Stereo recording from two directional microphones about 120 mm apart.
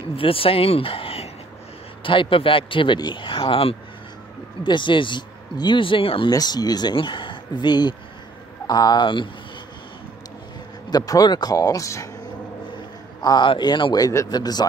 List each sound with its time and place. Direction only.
0.1 s speech: 50° left (ahead or behind)
6.3 s speech: 35° left (ahead or behind)
10.9 s speech: 30° left (ahead or behind)
13.2 s a man's voice: 35° left (ahead or behind)